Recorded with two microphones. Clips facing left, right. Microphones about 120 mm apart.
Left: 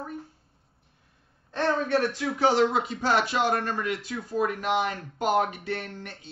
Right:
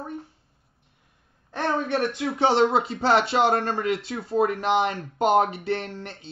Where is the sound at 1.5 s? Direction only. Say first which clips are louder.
Even; 20° right (ahead or behind).